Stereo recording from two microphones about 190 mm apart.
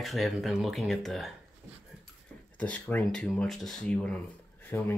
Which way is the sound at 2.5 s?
5° left (ahead or behind).